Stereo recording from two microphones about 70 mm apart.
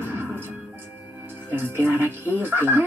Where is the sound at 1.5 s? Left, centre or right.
Right.